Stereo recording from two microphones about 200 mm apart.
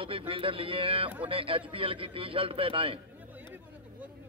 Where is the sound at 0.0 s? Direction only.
25° right (ahead or behind).